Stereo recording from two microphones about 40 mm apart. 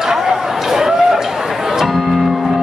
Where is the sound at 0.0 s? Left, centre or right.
Centre.